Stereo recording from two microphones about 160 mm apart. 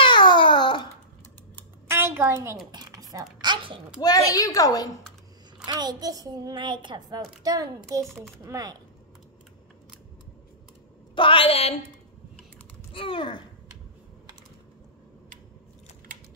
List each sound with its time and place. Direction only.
0.0 s babbling: 30° left (ahead or behind)
1.9 s a sound: 15° right (ahead or behind)
2.7 s computer keyboard: 25° right (ahead or behind)
3.3 s a child's voice: 30° right (ahead or behind)
4.3 s a woman's voice: 20° left (ahead or behind)
5.7 s a child's voice: 25° right (ahead or behind)
11.1 s a woman's voice: 35° left (ahead or behind)
12.9 s a woman's voice: 35° left (ahead or behind)